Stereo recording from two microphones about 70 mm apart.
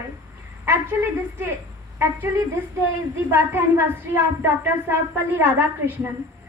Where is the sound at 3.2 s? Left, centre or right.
Right.